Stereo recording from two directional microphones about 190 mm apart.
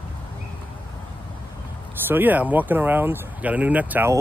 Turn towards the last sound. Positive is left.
turn(degrees=-10)  # may be behind; listen again after turning